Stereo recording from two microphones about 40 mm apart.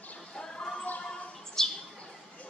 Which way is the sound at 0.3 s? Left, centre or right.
Left.